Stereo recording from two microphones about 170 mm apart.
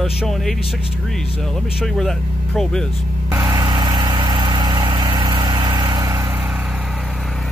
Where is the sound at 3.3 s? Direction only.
20° right (ahead or behind).